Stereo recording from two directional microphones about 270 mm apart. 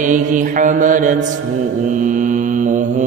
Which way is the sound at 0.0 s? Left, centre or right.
Right.